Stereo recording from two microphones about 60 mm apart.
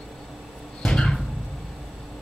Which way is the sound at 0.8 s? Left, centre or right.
Centre.